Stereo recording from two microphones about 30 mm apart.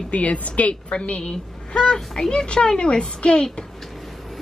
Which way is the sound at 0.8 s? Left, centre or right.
Left.